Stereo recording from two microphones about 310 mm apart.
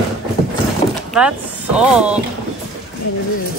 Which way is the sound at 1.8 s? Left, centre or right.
Centre.